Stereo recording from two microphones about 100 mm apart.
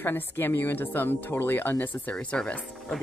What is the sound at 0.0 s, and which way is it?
Speech, 20° left (ahead or behind).